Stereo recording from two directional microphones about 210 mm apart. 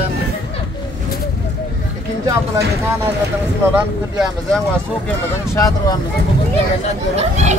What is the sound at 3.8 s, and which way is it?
Speech, 5° right (ahead or behind).